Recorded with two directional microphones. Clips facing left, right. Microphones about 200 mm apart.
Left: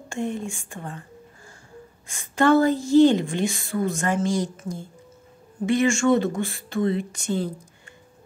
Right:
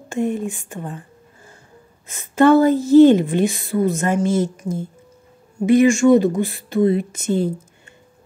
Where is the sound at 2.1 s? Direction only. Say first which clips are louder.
Right 5 dB; 15° right (ahead or behind).